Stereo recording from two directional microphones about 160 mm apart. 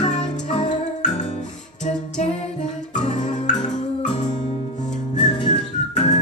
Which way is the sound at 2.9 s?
45° left (ahead or behind).